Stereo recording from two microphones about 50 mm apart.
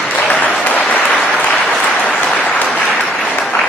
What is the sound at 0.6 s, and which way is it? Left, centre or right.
Applause, left.